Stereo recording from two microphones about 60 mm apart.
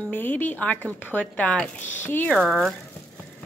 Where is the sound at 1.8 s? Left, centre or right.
Left.